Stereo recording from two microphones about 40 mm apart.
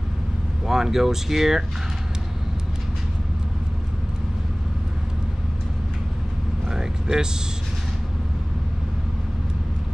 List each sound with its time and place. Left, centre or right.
0.7 s speech: centre
6.7 s vehicle: centre